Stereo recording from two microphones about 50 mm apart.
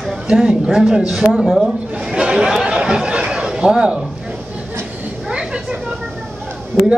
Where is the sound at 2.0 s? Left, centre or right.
Centre.